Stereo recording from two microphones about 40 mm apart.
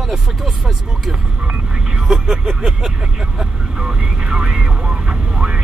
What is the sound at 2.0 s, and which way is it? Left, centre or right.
Speech, centre.